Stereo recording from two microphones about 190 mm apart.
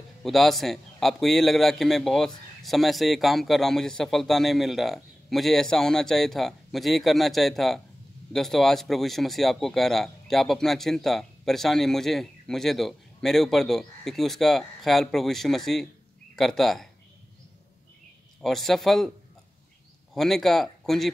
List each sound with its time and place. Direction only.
0.2 s a man's voice: centre (ahead or behind)
18.4 s a man's voice: centre (ahead or behind)
20.2 s a man's voice: centre (ahead or behind)